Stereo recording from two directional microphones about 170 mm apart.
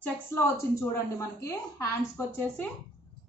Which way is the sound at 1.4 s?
15° left (ahead or behind).